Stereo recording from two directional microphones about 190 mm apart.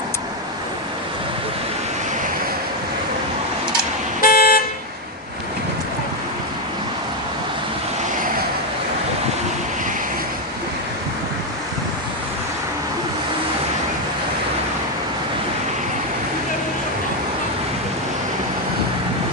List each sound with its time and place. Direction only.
4.2 s vehicle: 50° left (ahead or behind)